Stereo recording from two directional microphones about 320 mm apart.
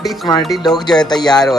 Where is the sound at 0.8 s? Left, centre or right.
Centre.